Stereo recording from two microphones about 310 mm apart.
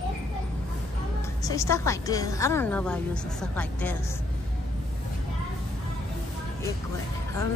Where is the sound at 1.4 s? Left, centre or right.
Centre.